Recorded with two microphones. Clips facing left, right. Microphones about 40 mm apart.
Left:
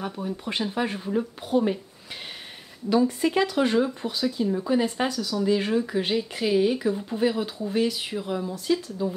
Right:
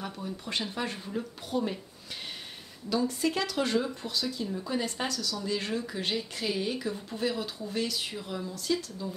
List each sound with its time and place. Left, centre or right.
0.0 s speech: left
2.9 s speech: left